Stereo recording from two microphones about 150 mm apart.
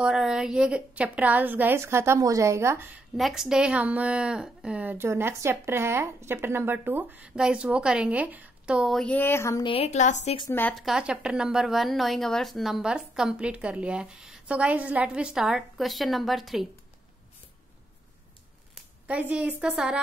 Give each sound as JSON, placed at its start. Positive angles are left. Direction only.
{"t": 0.0, "sound": "a woman's voice", "side_deg": -5}
{"t": 3.2, "sound": "a woman's voice", "side_deg": 0}
{"t": 9.6, "sound": "a woman's voice", "side_deg": 40}
{"t": 10.7, "sound": "speech", "side_deg": 0}
{"t": 18.8, "sound": "a woman's voice", "side_deg": -10}